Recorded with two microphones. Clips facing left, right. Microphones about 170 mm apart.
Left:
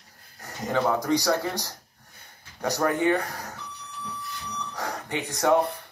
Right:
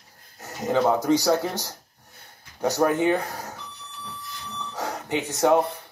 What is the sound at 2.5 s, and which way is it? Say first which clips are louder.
Speech: right 3 dB; 25° right (ahead or behind).